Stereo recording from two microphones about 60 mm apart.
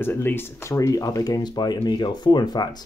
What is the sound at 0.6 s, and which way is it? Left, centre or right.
Speech, left.